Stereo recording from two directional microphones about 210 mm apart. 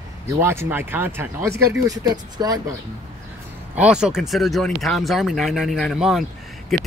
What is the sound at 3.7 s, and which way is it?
Speech, 5° right (ahead or behind).